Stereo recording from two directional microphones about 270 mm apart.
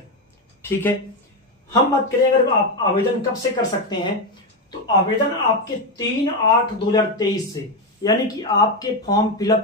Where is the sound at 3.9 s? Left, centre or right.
Centre.